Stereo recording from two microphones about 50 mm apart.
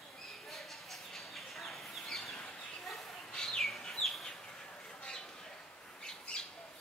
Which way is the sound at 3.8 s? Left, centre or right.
Centre.